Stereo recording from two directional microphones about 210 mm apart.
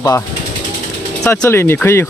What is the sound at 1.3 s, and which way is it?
Speech, 10° left (ahead or behind).